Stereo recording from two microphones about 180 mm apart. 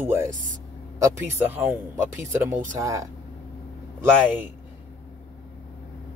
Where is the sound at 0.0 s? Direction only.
10° right (ahead or behind).